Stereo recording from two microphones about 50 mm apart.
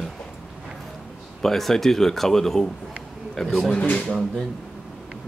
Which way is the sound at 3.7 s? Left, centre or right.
Centre.